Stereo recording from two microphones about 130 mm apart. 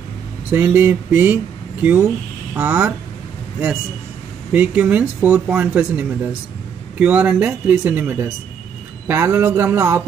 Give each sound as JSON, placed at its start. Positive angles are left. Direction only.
{"t": 0.5, "sound": "speech", "side_deg": -15}
{"t": 4.5, "sound": "a man's voice", "side_deg": -10}